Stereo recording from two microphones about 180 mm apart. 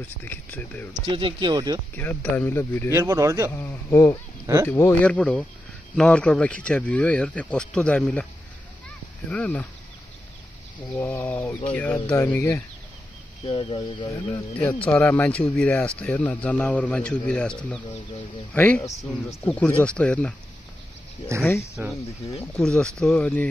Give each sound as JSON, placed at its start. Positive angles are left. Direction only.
{"t": 0.2, "sound": "speech", "side_deg": 10}
{"t": 1.0, "sound": "speech", "side_deg": -25}
{"t": 2.0, "sound": "speech", "side_deg": 10}
{"t": 2.9, "sound": "speech", "side_deg": -15}
{"t": 3.5, "sound": "speech", "side_deg": 15}
{"t": 9.3, "sound": "speech", "side_deg": 10}
{"t": 11.0, "sound": "speech", "side_deg": 15}
{"t": 13.4, "sound": "speech", "side_deg": 35}
{"t": 14.7, "sound": "speech", "side_deg": 10}
{"t": 21.3, "sound": "speech", "side_deg": -15}
{"t": 22.4, "sound": "speech", "side_deg": 5}